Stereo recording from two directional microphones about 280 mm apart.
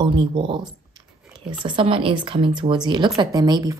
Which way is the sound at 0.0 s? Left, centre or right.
Centre.